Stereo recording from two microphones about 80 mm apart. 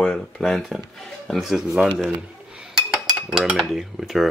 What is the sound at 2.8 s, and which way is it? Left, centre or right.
Dishes, centre.